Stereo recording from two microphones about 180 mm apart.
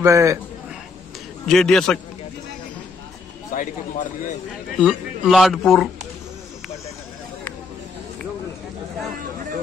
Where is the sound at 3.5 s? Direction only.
45° left (ahead or behind).